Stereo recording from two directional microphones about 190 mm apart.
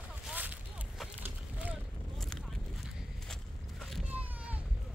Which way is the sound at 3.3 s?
Centre (ahead or behind).